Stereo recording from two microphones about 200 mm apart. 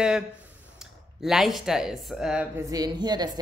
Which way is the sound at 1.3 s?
Centre (ahead or behind).